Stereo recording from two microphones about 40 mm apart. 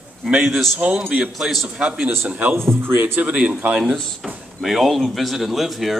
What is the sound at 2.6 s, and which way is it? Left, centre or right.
Speech, right.